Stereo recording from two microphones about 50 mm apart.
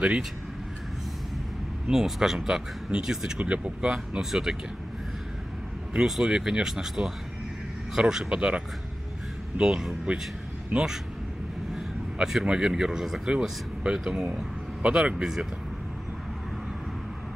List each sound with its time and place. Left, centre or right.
1.9 s speech: centre
3.3 s speech: right
4.2 s speech: centre
5.9 s speech: centre
12.2 s speech: centre
12.4 s speech: centre
13.3 s speech: centre
13.9 s speech: centre
14.2 s speech: right